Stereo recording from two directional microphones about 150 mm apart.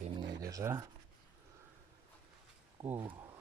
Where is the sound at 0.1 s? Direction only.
25° right (ahead or behind).